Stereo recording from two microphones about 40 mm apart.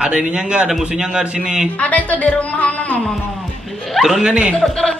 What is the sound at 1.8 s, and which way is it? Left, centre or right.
Speech, left.